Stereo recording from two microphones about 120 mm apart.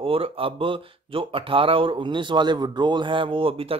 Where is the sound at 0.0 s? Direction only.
50° right (ahead or behind).